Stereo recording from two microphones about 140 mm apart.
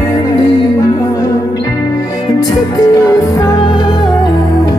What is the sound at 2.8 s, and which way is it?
Music, 25° left (ahead or behind).